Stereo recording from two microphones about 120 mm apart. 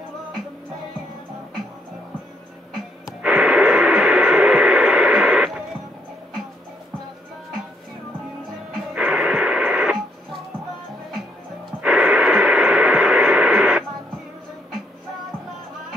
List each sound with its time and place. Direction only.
3.2 s radio: 5° right (ahead or behind)
8.9 s radio: 10° right (ahead or behind)
11.8 s radio: 10° right (ahead or behind)